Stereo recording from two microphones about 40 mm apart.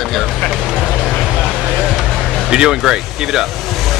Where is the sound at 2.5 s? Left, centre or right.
Centre.